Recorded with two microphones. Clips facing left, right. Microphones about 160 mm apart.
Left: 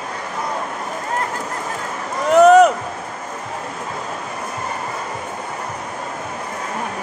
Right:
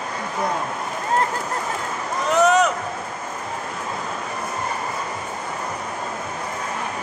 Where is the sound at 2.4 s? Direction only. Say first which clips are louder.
Left 8 dB; 50° left (ahead or behind).